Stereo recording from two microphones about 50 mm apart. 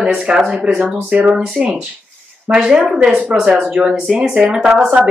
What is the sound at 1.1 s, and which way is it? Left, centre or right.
Speech, right.